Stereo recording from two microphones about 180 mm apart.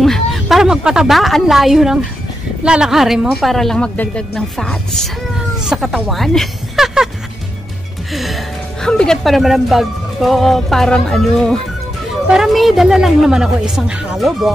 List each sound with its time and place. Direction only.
0.0 s a woman's voice: centre (ahead or behind)
8.1 s speech: centre (ahead or behind)